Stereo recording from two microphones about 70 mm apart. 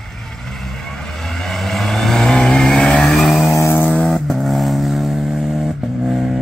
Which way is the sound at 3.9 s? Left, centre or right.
Centre.